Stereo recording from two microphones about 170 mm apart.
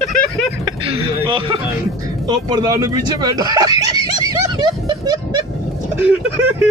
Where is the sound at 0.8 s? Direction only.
30° right (ahead or behind).